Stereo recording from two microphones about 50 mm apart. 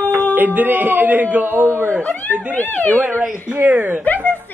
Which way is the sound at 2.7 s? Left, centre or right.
Left.